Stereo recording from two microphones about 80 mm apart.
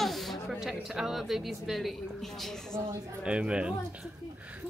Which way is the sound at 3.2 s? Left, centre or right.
Centre.